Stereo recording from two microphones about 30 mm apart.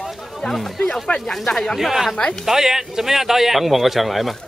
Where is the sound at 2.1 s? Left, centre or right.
Left.